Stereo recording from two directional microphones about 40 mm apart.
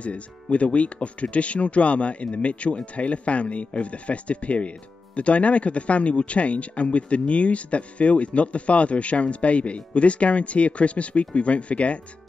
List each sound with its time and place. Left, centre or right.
0.0 s speech: left